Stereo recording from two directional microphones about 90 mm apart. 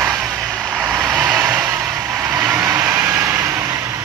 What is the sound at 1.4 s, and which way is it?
Vehicle, 25° right (ahead or behind).